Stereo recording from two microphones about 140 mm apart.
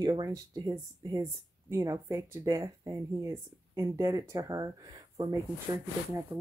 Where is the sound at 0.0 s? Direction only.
25° right (ahead or behind).